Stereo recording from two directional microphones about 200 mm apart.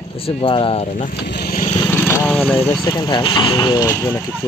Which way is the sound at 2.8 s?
20° left (ahead or behind).